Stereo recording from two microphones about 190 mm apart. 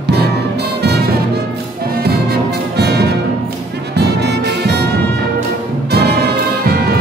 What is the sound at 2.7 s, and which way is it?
Music, 60° right (ahead or behind).